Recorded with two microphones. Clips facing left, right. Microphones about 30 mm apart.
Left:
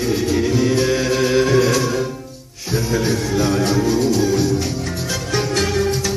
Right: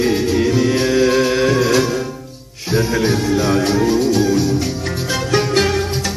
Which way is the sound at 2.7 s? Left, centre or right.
Right.